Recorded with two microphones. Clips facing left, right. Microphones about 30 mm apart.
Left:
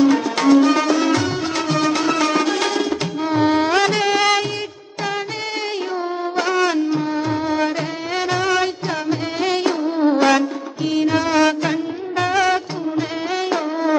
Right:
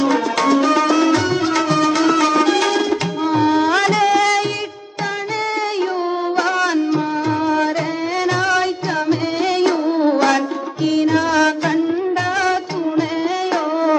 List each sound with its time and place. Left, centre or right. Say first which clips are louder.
0.4 s music: left 1 dB; right
2.4 s music: right 4 dB; right
3.4 s music: even; left
9.6 s music: right 4 dB; right
11.1 s music: right 1 dB; left